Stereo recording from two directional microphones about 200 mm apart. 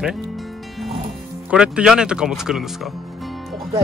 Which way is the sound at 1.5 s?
5° right (ahead or behind).